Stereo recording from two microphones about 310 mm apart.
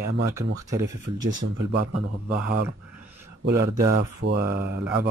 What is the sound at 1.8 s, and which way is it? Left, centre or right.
Speech, right.